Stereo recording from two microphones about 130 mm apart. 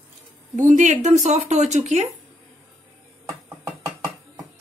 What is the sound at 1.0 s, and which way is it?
Speech, 65° right (ahead or behind).